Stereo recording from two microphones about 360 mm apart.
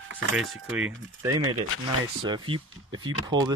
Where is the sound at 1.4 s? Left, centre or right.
Right.